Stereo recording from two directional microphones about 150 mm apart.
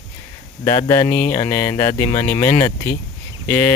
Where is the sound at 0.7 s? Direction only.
20° left (ahead or behind).